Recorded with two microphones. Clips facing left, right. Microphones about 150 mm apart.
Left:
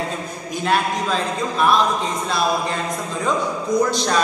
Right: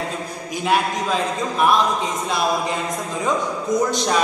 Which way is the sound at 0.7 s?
10° right (ahead or behind).